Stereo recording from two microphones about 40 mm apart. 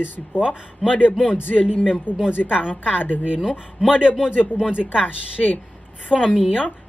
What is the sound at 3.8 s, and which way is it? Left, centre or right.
Speech, right.